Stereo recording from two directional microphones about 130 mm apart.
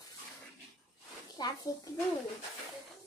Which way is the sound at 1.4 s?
35° left (ahead or behind).